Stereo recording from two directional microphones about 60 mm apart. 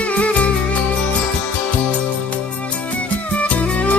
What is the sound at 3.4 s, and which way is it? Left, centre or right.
Music, left.